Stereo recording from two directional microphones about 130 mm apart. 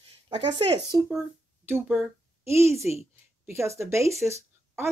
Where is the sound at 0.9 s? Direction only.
25° right (ahead or behind).